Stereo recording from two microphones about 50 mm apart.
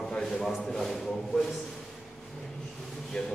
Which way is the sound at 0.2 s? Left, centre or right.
Centre.